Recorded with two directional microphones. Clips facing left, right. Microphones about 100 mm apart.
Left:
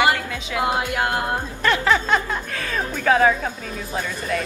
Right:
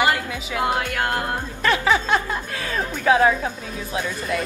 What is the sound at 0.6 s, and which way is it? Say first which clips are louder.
Speech: left 1 dB; 20° left (ahead or behind).